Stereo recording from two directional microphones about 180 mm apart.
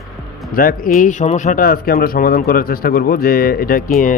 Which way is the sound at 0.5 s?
50° left (ahead or behind).